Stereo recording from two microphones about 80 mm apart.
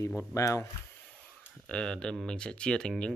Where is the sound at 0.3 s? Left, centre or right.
Left.